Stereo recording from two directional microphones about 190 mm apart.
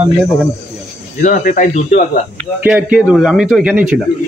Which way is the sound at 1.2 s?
45° left (ahead or behind).